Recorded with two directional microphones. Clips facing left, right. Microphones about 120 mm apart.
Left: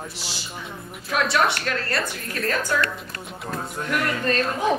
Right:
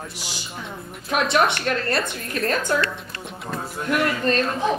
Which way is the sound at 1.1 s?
20° right (ahead or behind).